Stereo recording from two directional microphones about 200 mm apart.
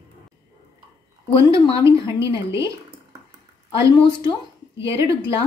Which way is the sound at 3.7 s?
25° left (ahead or behind).